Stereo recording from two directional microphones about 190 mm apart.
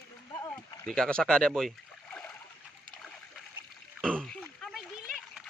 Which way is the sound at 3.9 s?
5° left (ahead or behind).